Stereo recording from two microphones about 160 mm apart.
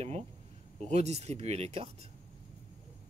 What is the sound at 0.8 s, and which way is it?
Speech, 45° right (ahead or behind).